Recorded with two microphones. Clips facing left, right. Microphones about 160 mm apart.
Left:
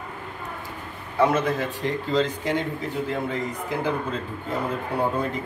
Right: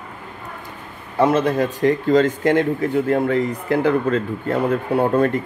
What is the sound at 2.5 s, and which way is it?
Speech, 55° right (ahead or behind).